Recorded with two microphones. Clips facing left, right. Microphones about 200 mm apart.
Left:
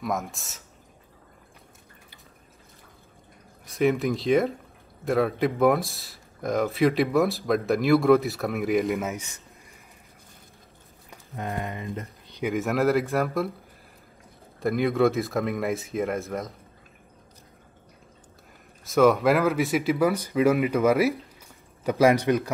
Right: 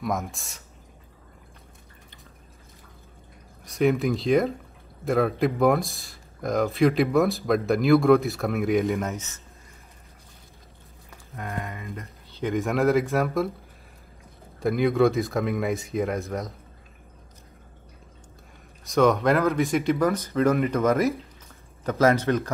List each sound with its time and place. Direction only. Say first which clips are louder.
0.0 s speech: right 1 dB; centre (ahead or behind)
3.6 s speech: right 1 dB; centre (ahead or behind)
11.4 s speech: left 2 dB; 20° left (ahead or behind)
12.0 s a sound: left 1 dB; 15° left (ahead or behind)
12.5 s speech: right 1 dB; centre (ahead or behind)
14.6 s speech: right 1 dB; centre (ahead or behind)
18.9 s speech: left 1 dB; 5° left (ahead or behind)